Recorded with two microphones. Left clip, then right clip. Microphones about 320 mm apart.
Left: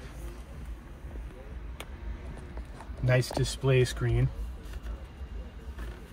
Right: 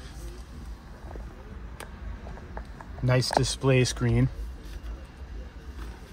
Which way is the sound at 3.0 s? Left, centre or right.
Centre.